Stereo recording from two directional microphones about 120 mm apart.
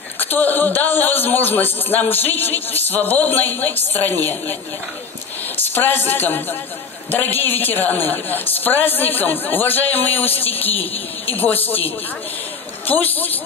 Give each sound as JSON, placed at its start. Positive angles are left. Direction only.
{"t": 0.2, "sound": "a man's voice", "side_deg": 15}
{"t": 5.6, "sound": "a man's voice", "side_deg": 15}
{"t": 12.8, "sound": "a man's voice", "side_deg": 15}